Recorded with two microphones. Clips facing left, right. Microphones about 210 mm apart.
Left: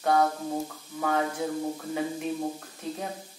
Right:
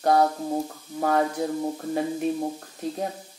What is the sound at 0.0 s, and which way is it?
A woman's voice, 35° right (ahead or behind).